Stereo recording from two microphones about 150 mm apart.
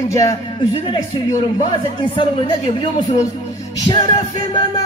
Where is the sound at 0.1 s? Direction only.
20° left (ahead or behind).